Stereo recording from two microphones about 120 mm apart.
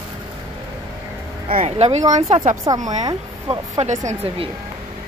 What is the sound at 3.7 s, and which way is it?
Speech, 80° right.